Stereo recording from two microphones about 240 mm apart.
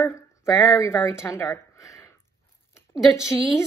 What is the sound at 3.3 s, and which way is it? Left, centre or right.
Speech, centre.